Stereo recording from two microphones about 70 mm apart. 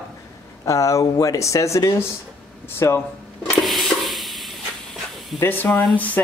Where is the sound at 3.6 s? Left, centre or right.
Centre.